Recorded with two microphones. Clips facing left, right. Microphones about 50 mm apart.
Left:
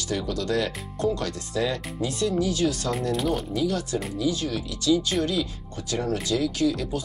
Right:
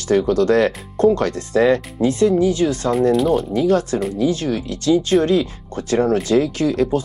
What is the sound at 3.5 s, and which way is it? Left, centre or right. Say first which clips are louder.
Speech: right 9 dB; right.